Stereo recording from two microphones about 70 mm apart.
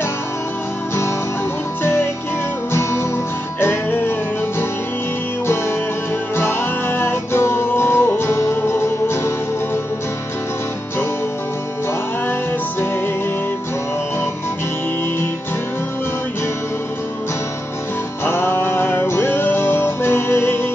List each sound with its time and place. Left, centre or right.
1.8 s music: left
3.6 s music: left
6.3 s music: left
18.2 s music: left